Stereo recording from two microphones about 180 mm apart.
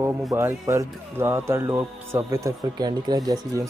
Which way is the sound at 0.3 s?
15° right (ahead or behind).